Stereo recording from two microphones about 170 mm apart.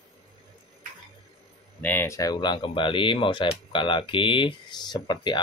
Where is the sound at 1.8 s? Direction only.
10° left (ahead or behind).